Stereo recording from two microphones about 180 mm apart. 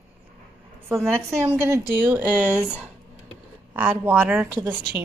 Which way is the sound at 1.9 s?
10° right (ahead or behind).